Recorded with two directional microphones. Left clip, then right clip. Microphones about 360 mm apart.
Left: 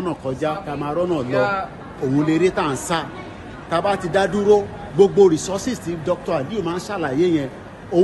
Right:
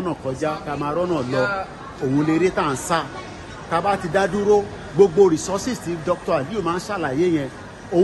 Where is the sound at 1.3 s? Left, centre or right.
Centre.